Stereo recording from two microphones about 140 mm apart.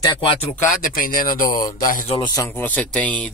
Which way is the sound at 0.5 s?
85° left.